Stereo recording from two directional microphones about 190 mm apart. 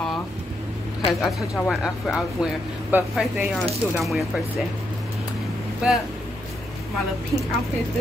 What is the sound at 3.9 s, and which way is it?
Speech, centre (ahead or behind).